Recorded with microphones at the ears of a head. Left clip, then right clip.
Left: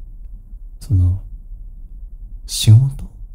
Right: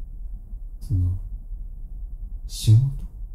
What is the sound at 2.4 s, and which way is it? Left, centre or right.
Speech, left.